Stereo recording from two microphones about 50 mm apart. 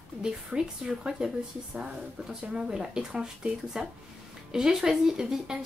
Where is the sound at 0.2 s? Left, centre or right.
Centre.